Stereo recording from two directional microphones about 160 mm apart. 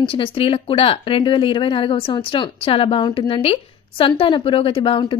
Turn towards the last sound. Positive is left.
turn(degrees=30)  # may be behind; listen again after turning